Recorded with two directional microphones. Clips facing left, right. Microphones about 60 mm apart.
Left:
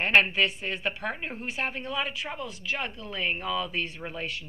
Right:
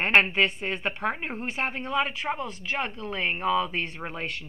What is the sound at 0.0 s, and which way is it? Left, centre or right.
Speech, right.